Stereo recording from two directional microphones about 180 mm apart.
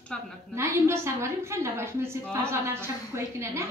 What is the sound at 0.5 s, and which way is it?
A woman's voice, 15° right (ahead or behind).